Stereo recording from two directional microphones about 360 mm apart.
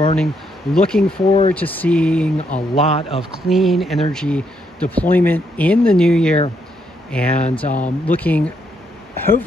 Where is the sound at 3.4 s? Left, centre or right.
Centre.